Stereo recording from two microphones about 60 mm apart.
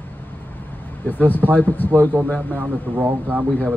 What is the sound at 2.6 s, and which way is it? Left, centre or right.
Speech, right.